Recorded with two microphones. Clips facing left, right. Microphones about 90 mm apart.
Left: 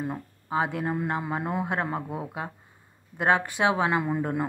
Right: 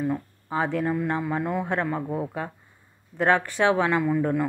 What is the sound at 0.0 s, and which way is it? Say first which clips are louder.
Speech: right 5 dB; 20° left (ahead or behind).